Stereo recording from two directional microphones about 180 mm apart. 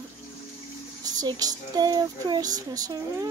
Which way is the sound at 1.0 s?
20° right (ahead or behind).